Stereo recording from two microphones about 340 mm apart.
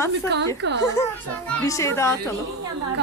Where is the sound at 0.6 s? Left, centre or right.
Right.